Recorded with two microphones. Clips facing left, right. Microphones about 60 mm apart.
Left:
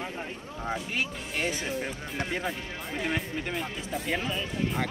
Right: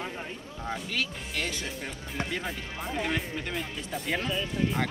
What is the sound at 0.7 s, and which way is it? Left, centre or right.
Speech, left.